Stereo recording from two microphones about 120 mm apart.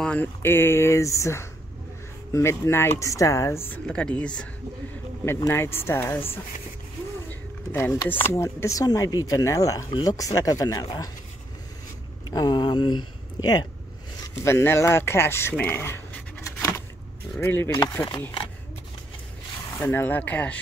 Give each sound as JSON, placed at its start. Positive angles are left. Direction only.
{"t": 0.0, "sound": "speech", "side_deg": 10}
{"t": 3.8, "sound": "speech", "side_deg": 10}
{"t": 5.2, "sound": "speech", "side_deg": 20}
{"t": 9.8, "sound": "speech", "side_deg": 40}
{"t": 10.1, "sound": "speech", "side_deg": 30}
{"t": 12.3, "sound": "speech", "side_deg": 35}
{"t": 14.2, "sound": "speech", "side_deg": 20}
{"t": 19.8, "sound": "speech", "side_deg": 15}